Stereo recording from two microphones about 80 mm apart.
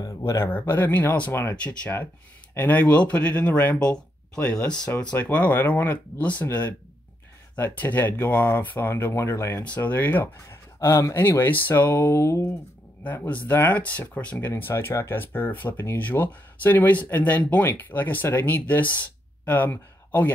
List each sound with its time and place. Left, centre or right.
0.2 s speech: left
7.5 s speech: left
11.1 s speech: left
13.0 s speech: centre
14.4 s speech: left